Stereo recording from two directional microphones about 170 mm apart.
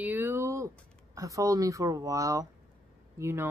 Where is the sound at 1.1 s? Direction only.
20° right (ahead or behind).